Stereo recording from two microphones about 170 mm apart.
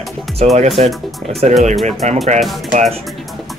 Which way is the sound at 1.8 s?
40° right (ahead or behind).